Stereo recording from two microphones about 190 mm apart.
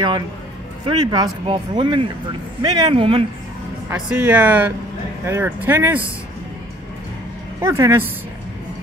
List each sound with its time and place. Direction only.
0.8 s speech: 20° right (ahead or behind)
4.1 s speech: 10° right (ahead or behind)
7.6 s speech: 15° right (ahead or behind)